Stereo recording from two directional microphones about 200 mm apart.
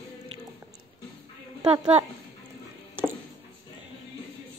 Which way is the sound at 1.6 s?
25° right (ahead or behind).